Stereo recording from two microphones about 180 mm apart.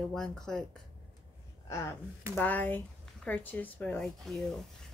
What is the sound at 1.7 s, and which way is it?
Speech, 15° left (ahead or behind).